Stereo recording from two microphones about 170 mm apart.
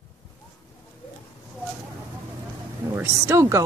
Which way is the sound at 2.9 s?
20° right (ahead or behind).